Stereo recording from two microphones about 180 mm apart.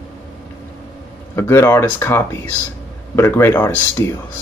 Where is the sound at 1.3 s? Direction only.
15° left (ahead or behind).